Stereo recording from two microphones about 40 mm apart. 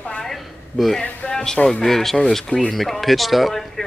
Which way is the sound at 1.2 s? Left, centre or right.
Centre.